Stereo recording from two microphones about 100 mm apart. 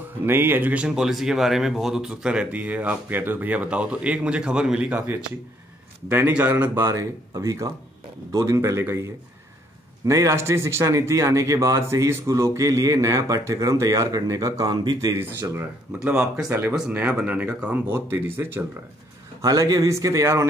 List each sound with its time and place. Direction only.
0.2 s speech: 20° right (ahead or behind); by 15.1 s 40° right (ahead or behind)
15.1 s speech: 25° right (ahead or behind)
16.0 s speech: 10° right (ahead or behind)
16.4 s speech: 25° right (ahead or behind)
16.7 s speech: 10° right (ahead or behind)
19.4 s speech: 35° right (ahead or behind)